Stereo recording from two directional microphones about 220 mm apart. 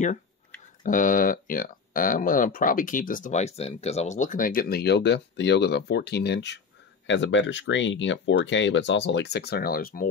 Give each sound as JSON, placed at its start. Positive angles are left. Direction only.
{"t": 0.8, "sound": "speech", "side_deg": 35}